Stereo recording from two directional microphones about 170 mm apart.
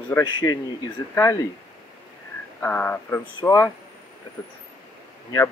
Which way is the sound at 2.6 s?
10° left (ahead or behind).